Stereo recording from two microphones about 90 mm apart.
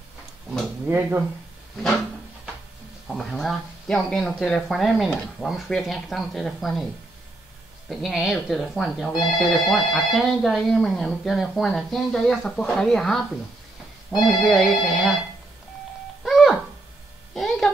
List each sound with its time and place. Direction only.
0.8 s speech: 20° right (ahead or behind)
3.1 s speech: centre (ahead or behind)
7.9 s speech: centre (ahead or behind)
16.3 s a sound: centre (ahead or behind)